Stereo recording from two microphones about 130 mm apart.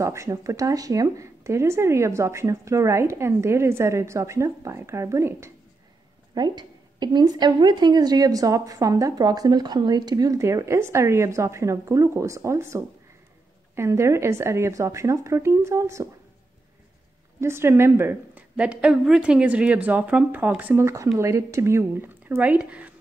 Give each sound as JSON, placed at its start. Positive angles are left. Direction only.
{"t": 0.0, "sound": "a woman's voice", "side_deg": -20}
{"t": 6.3, "sound": "a woman's voice", "side_deg": -35}
{"t": 17.4, "sound": "a woman's voice", "side_deg": -20}